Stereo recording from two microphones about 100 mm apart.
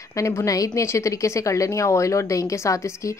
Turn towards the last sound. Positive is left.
turn(degrees=30)  # may be behind; listen again after turning